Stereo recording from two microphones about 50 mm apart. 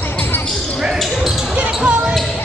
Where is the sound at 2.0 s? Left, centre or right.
Centre.